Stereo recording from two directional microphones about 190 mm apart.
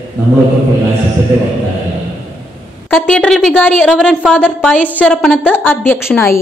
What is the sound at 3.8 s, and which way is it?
Speech, 5° right (ahead or behind).